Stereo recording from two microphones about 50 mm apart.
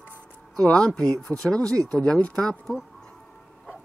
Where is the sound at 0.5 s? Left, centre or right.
Centre.